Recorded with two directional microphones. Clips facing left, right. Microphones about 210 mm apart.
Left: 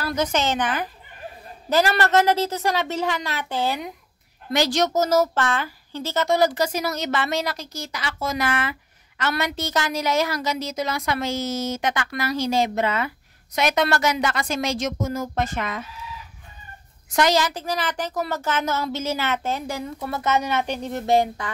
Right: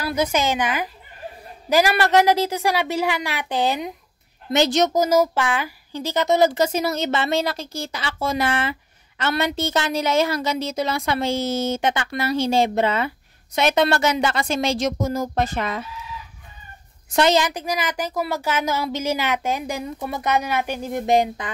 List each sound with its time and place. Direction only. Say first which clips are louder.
0.0 s a woman's voice: right 2 dB; 10° right (ahead or behind); by 15.8 s 35° right (ahead or behind)
17.1 s a woman's voice: right 2 dB; 25° right (ahead or behind)